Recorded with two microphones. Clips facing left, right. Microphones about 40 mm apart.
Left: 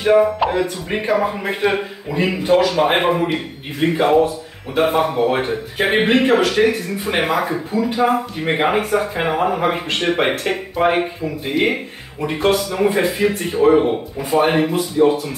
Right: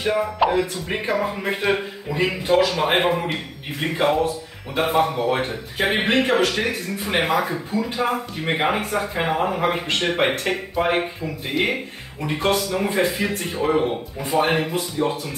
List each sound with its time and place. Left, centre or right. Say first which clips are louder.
0.0 s speech: left 6 dB; centre